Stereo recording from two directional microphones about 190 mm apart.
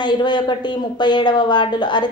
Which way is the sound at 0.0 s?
25° left (ahead or behind).